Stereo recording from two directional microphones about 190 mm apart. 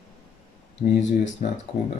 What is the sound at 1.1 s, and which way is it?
Speech, 40° left (ahead or behind).